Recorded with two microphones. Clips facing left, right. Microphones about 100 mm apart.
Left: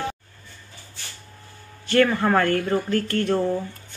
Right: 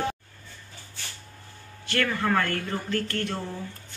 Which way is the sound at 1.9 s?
35° left (ahead or behind).